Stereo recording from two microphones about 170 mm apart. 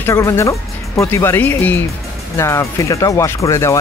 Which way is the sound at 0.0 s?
15° left (ahead or behind).